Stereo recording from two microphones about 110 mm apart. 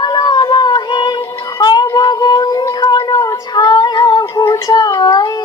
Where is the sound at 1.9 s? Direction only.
35° left (ahead or behind).